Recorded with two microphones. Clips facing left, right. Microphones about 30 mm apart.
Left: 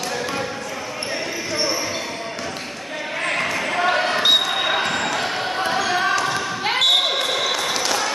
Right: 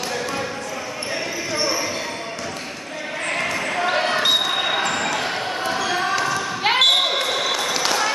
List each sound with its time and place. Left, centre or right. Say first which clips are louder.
1.5 s basketball bounce: even; centre
3.3 s basketball bounce: left 1 dB; centre
5.7 s basketball bounce: left 2 dB; centre
6.6 s basketball bounce: right 3 dB; centre
6.9 s basketball bounce: even; centre